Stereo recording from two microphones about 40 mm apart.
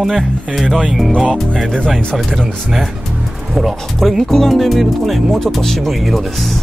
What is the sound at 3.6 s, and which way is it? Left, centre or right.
Speech, centre.